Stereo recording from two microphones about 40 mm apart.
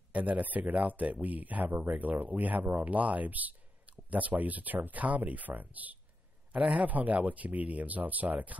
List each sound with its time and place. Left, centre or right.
0.1 s speech: right